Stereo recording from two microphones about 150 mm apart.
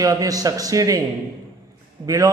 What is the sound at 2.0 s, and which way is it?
Speech, 25° right (ahead or behind).